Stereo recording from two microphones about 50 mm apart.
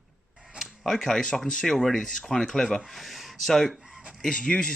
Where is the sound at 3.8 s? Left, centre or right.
Centre.